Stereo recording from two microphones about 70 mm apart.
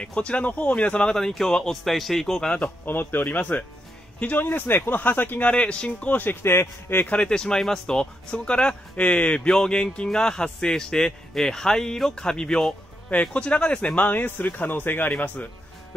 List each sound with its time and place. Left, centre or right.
0.0 s speech: centre
2.8 s speech: left
6.4 s speech: left
7.1 s speech: centre